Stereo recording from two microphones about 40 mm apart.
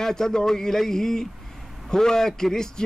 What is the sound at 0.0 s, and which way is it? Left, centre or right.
Speech, centre.